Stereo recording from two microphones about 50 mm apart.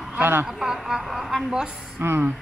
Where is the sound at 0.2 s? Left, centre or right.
Right.